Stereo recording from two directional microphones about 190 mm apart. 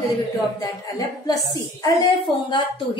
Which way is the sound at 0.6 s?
20° left (ahead or behind).